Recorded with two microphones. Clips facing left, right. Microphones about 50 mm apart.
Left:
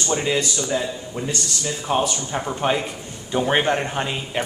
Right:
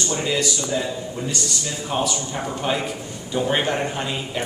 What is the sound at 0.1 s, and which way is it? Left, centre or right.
Speech, centre.